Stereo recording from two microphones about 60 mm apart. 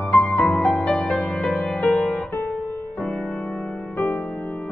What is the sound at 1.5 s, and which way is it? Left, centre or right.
Music, centre.